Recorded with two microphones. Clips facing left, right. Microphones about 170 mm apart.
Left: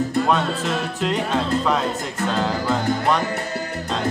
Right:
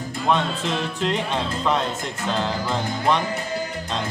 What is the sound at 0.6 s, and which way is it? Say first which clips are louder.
Music: left 1 dB; 45° left (ahead or behind).